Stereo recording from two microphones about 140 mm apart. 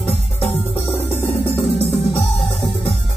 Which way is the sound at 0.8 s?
45° left (ahead or behind).